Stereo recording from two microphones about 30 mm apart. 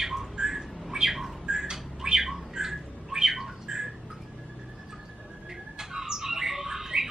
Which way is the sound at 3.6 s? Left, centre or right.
Right.